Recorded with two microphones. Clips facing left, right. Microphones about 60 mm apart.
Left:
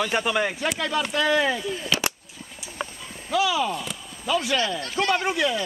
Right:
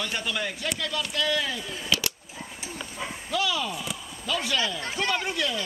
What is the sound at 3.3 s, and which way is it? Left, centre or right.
Speech, centre.